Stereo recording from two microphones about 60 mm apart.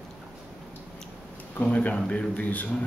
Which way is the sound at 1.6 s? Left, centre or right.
Left.